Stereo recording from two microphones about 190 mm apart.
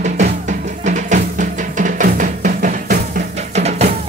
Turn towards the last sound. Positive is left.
turn(degrees=-35)  # may be behind; listen again after turning